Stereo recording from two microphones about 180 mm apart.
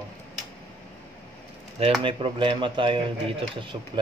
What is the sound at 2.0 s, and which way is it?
Speech, 30° right (ahead or behind).